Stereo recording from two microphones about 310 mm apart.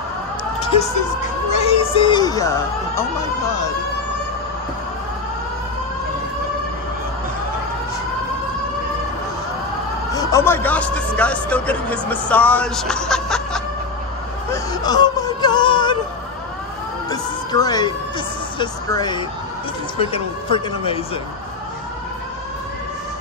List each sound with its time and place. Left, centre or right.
1.6 s speech: centre
10.1 s speech: centre
14.5 s wail: centre
17.1 s music: centre
18.6 s speech: centre